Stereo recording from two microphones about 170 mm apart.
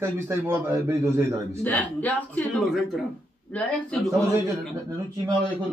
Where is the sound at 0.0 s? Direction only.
15° right (ahead or behind).